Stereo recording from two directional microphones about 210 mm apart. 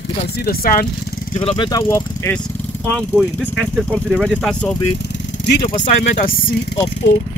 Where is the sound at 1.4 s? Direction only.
25° left (ahead or behind).